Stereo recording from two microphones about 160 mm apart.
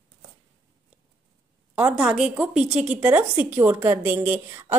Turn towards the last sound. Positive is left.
turn(degrees=-15)  # may be behind; listen again after turning